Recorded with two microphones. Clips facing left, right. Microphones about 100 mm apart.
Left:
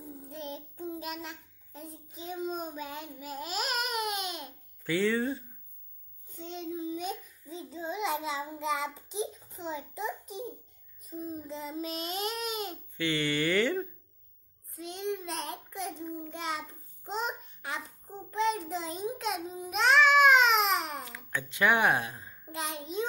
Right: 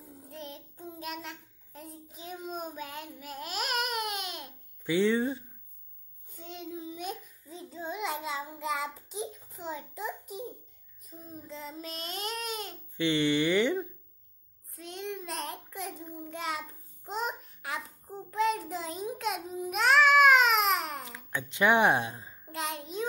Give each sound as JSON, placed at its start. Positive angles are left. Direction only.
{"t": 0.0, "sound": "child singing", "side_deg": 0}
{"t": 4.8, "sound": "speech", "side_deg": -20}
{"t": 6.3, "sound": "child singing", "side_deg": -5}
{"t": 11.1, "sound": "babbling", "side_deg": 5}
{"t": 12.9, "sound": "a sound", "side_deg": -25}
{"t": 14.8, "sound": "child singing", "side_deg": 0}
{"t": 16.2, "sound": "babbling", "side_deg": -5}
{"t": 21.1, "sound": "a sound", "side_deg": -20}
{"t": 22.5, "sound": "a sound", "side_deg": 0}